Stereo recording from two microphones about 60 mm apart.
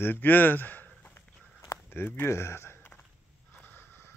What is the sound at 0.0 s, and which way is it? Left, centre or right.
Speech, left.